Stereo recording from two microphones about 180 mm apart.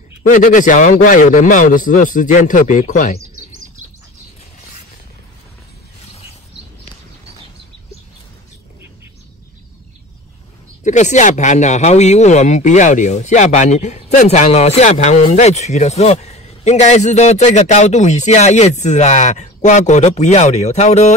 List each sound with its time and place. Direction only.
0.3 s a man's voice: 45° left (ahead or behind)
10.8 s speech: 40° left (ahead or behind)